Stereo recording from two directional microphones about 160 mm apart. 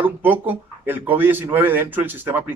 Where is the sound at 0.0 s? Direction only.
10° right (ahead or behind).